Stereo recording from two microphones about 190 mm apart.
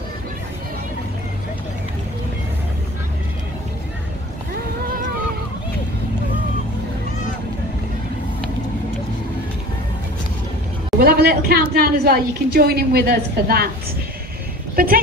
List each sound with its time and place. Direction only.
11.0 s a woman's voice: 55° right (ahead or behind)
14.8 s speech: 50° right (ahead or behind)